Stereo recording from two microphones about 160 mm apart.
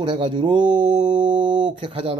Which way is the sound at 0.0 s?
30° right (ahead or behind).